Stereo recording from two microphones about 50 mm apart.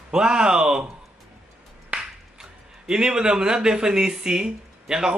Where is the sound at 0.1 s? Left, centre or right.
Centre.